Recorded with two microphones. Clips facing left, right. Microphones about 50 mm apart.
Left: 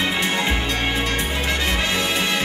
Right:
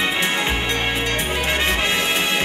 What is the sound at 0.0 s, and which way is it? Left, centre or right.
Music, right.